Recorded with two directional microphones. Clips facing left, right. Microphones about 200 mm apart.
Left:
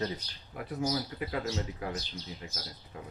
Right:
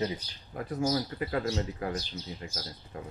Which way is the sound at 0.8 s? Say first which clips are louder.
Right 3 dB; 50° right (ahead or behind).